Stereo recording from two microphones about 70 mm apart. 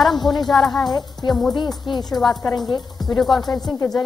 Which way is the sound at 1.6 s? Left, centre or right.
Left.